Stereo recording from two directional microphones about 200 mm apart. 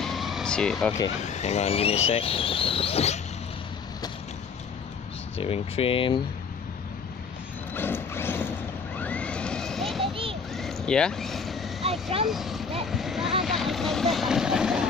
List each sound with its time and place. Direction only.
0.0 s vehicle: centre (ahead or behind)
1.2 s speech: 35° left (ahead or behind)
5.4 s speech: 30° left (ahead or behind)
7.7 s mechanisms: 10° left (ahead or behind)
10.0 s a sound: 25° right (ahead or behind)
10.5 s vehicle: centre (ahead or behind)
12.3 s speech: centre (ahead or behind)
12.8 s vehicle: centre (ahead or behind)